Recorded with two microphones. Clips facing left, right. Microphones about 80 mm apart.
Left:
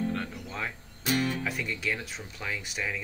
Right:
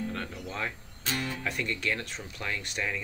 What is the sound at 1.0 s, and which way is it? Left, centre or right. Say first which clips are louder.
Speech: left 5 dB; centre.